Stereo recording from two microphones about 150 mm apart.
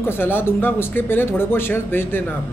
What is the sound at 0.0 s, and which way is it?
Speech, 15° left (ahead or behind).